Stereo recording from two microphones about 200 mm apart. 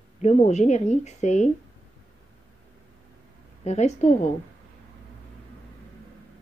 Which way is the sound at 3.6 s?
35° left (ahead or behind).